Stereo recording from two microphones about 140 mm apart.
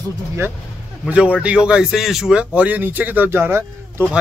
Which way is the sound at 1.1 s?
5° right (ahead or behind).